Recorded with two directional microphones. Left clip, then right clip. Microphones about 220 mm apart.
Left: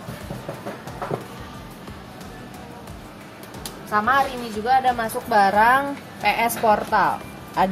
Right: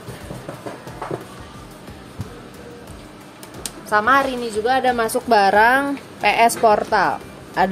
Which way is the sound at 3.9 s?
55° right (ahead or behind).